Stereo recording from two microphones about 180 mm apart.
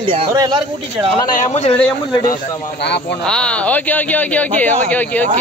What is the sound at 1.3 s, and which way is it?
Speech, 35° left (ahead or behind).